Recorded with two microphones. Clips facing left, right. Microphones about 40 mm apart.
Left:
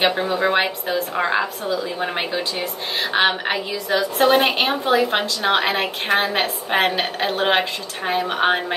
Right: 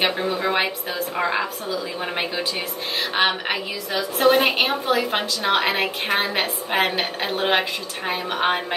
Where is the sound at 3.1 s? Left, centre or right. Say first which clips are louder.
Left 3 dB; left.